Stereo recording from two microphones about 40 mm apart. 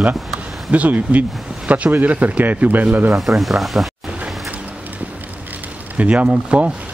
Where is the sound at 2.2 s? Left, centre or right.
Right.